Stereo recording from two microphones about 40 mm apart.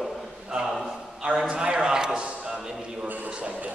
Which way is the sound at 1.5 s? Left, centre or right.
Centre.